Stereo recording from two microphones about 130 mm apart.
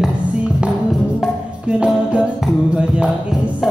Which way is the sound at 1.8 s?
5° right (ahead or behind).